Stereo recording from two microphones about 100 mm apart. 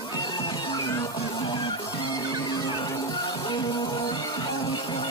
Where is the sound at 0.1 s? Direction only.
45° left (ahead or behind).